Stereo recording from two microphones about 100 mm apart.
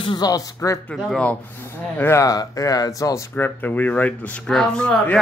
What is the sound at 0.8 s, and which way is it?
Speech, 10° left (ahead or behind).